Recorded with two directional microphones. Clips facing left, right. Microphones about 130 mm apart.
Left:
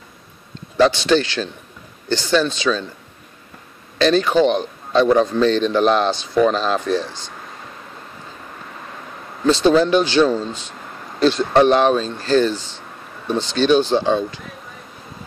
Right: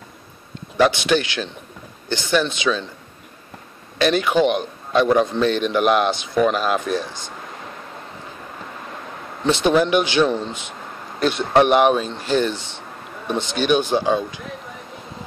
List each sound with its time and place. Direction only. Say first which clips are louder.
0.7 s a man's voice: left 2 dB; 15° right (ahead or behind)
4.0 s a man's voice: left 2 dB; 15° right (ahead or behind)
9.4 s a man's voice: left 3 dB; 15° right (ahead or behind)